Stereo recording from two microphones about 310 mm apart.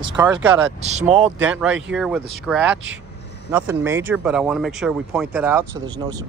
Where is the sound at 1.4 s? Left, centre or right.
Centre.